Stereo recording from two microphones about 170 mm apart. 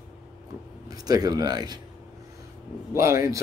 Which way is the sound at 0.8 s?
20° right (ahead or behind).